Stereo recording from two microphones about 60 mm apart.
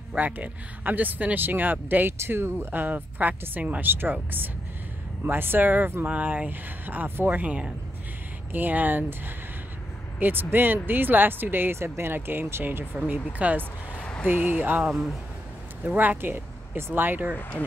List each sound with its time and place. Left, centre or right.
0.1 s speech: right
6.0 s speech: right
10.1 s speech: right
13.4 s speech: right
13.9 s a sound: centre
14.2 s speech: right
14.9 s speech: centre
15.8 s speech: right
17.4 s speech: left